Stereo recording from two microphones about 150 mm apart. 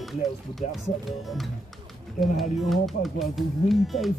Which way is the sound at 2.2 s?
Centre (ahead or behind).